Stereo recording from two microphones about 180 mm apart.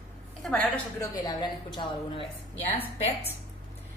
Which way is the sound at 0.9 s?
25° left (ahead or behind).